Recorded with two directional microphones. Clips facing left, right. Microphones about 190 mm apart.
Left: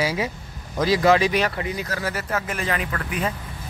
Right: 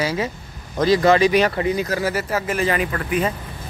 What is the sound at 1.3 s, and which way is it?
Speech, 30° right (ahead or behind).